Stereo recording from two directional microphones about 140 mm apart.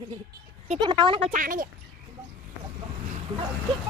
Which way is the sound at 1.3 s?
75° right (ahead or behind).